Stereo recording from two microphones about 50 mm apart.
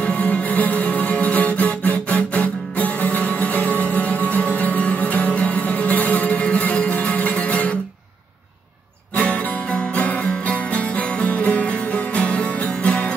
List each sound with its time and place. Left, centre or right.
0.0 s music: left
9.1 s music: left